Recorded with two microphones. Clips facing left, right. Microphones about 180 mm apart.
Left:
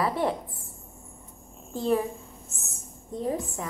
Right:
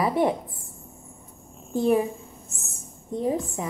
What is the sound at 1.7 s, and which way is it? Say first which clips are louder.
Speech: right 4 dB; 15° right (ahead or behind).